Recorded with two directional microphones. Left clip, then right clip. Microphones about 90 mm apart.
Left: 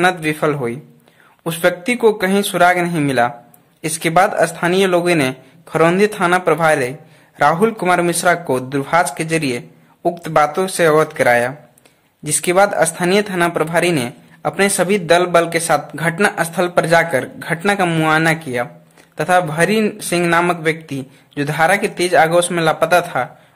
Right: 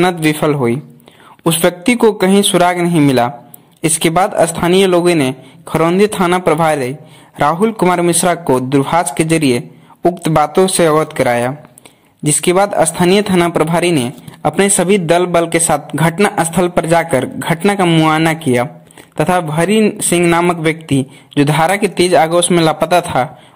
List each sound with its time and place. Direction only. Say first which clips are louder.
0.0 s a man's voice: right 2 dB; 25° right (ahead or behind)
17.8 s speech: right 4 dB; 10° right (ahead or behind)
18.2 s speech: right 4 dB; 30° right (ahead or behind)
21.4 s speech: right 3 dB; 30° right (ahead or behind)